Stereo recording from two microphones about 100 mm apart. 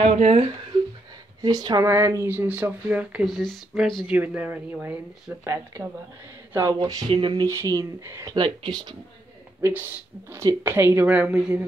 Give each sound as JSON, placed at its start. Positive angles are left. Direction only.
{"t": 0.0, "sound": "speech", "side_deg": -85}
{"t": 1.4, "sound": "speech", "side_deg": -40}
{"t": 1.9, "sound": "speech", "side_deg": -25}
{"t": 3.3, "sound": "speech", "side_deg": 0}
{"t": 4.1, "sound": "speech", "side_deg": -15}
{"t": 7.1, "sound": "speech", "side_deg": -55}
{"t": 7.4, "sound": "speech", "side_deg": -30}
{"t": 8.4, "sound": "speech", "side_deg": -50}
{"t": 9.6, "sound": "speech", "side_deg": -25}